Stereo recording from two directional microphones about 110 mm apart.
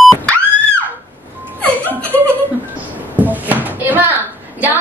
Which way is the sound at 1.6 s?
15° left (ahead or behind).